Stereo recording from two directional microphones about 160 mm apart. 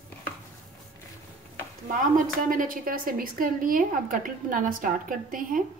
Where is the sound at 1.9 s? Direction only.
55° right (ahead or behind).